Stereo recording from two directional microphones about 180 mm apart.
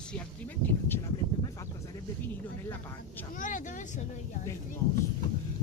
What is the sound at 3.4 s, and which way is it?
Speech, 45° left (ahead or behind).